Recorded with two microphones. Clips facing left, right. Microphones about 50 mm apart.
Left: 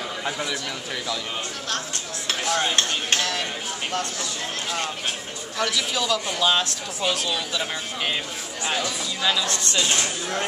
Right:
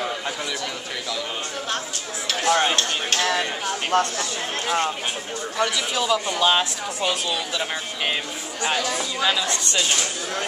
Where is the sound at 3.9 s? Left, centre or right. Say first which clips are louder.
Right 9 dB; right.